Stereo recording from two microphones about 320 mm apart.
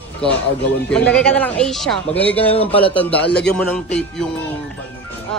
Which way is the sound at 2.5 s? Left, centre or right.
Centre.